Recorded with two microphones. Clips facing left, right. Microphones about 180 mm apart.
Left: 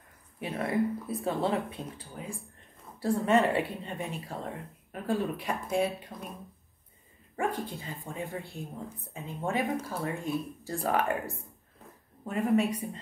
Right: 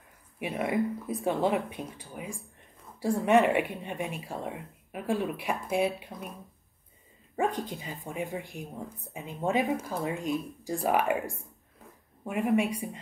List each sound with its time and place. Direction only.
0.4 s speech: 15° right (ahead or behind)
7.3 s speech: 20° right (ahead or behind)